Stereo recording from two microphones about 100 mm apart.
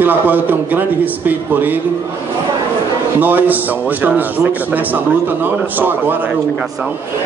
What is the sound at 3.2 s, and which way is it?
A man's voice, 20° right (ahead or behind).